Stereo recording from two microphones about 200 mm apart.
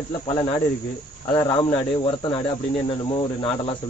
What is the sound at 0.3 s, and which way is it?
Speech, 15° left (ahead or behind).